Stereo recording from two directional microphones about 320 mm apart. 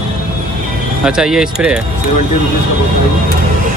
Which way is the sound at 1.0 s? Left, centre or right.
Centre.